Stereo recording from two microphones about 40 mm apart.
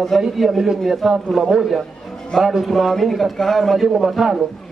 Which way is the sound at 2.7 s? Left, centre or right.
Centre.